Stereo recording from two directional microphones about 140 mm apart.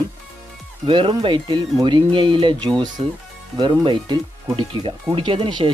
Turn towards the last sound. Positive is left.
turn(degrees=-35)  # may be behind; listen again after turning